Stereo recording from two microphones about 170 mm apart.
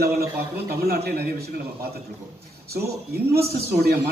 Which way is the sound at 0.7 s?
65° right (ahead or behind).